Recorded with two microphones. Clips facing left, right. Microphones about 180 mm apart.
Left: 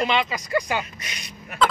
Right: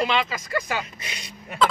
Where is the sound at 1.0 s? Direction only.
30° right (ahead or behind).